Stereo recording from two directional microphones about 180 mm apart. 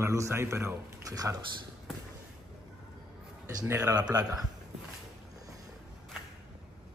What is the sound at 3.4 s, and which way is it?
Speech, 15° right (ahead or behind).